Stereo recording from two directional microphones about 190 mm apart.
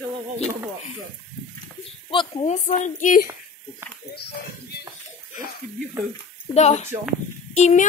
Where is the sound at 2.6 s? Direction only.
40° left (ahead or behind).